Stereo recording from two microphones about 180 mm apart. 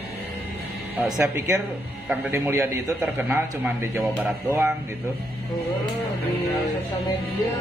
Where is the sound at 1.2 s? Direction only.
15° right (ahead or behind).